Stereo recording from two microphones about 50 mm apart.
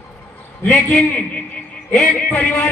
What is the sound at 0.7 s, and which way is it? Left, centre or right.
A man's voice, centre.